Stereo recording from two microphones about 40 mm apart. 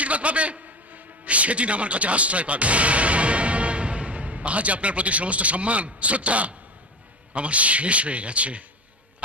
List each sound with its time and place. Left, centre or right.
0.0 s a man's voice: right